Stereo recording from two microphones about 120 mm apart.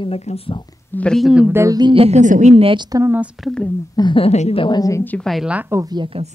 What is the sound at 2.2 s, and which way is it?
Speech, 85° right.